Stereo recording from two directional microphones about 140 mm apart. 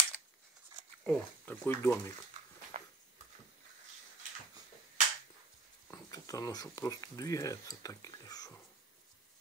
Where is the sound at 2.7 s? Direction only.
50° right (ahead or behind).